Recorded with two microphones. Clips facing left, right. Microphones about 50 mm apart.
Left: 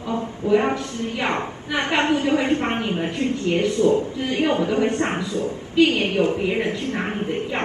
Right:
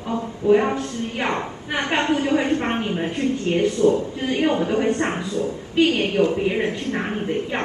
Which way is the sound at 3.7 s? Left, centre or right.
Left.